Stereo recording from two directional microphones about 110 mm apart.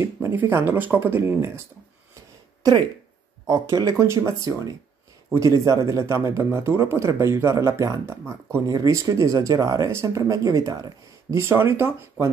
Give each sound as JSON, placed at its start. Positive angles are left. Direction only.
{"t": 0.0, "sound": "a man's voice", "side_deg": -20}
{"t": 3.4, "sound": "a man's voice", "side_deg": -30}